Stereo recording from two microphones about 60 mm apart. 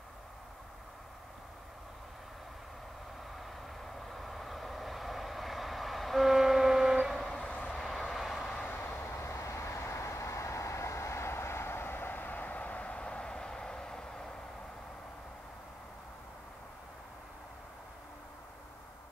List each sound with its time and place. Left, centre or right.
4.1 s vehicle: centre
7.2 s vehicle: centre
8.8 s vehicle: left; by 14.2 s centre